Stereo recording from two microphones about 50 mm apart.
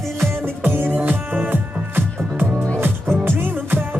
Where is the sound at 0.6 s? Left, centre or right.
Right.